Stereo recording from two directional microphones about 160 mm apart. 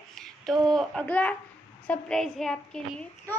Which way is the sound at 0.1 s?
5° left (ahead or behind).